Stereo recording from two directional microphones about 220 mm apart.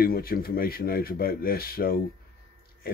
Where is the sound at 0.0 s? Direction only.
40° left (ahead or behind).